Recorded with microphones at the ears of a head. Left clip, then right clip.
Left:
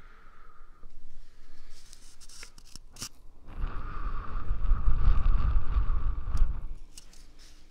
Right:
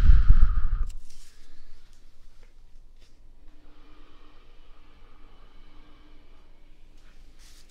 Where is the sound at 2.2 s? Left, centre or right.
Left.